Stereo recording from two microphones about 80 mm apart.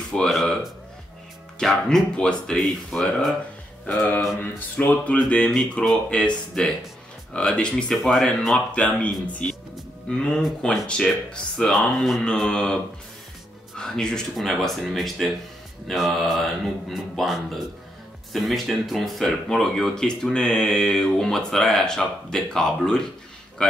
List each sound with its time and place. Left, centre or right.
0.1 s a sound: centre
1.6 s speech: centre
3.8 s speech: left
7.9 s speech: centre
13.7 s speech: centre